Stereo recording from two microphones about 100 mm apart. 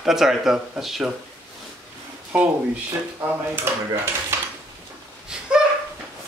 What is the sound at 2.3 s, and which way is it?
Speech, 15° right (ahead or behind).